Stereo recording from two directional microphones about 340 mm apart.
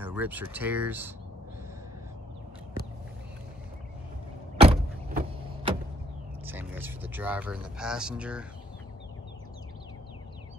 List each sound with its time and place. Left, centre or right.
0.0 s speech: centre
4.6 s vehicle: centre
6.4 s speech: centre